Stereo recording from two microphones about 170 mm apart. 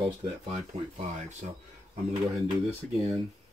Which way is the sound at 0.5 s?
40° right (ahead or behind).